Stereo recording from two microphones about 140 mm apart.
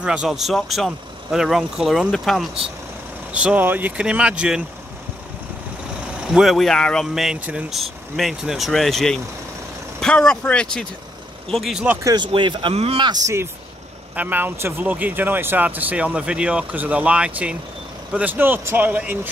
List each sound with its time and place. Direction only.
0.0 s speech: 5° right (ahead or behind)
3.3 s speech: 10° right (ahead or behind)
6.2 s speech: 5° right (ahead or behind)
11.9 s speech: 25° right (ahead or behind)
12.3 s speech: 35° right (ahead or behind)
14.1 s speech: 10° right (ahead or behind)